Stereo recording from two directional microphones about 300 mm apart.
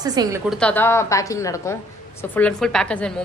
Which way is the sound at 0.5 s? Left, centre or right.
Centre.